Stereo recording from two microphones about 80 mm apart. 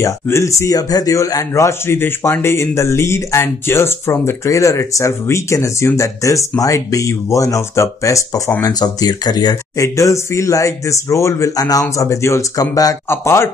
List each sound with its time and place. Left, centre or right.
0.0 s speech: left
8.6 s speech: left
9.8 s speech: left
13.1 s speech: left